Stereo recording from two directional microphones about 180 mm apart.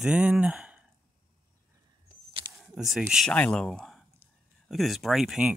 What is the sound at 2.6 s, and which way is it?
Speech, centre (ahead or behind).